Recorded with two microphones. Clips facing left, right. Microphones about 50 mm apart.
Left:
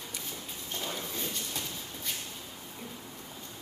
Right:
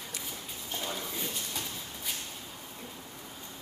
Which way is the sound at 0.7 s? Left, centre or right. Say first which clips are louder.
Right 1 dB; centre.